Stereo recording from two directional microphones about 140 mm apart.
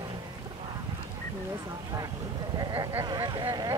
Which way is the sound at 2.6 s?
25° right (ahead or behind).